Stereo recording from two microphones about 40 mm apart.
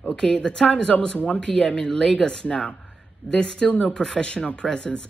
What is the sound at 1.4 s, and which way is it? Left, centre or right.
Speech, centre.